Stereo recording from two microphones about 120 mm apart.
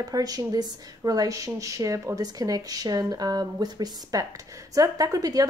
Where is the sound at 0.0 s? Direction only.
30° right (ahead or behind).